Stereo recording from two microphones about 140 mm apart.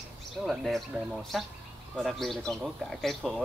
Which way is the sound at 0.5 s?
Centre (ahead or behind).